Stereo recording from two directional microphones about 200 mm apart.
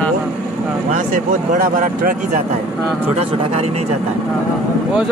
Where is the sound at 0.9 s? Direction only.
40° right (ahead or behind).